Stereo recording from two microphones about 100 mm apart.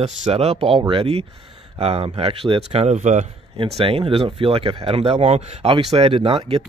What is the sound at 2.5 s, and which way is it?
Speech, 90° right.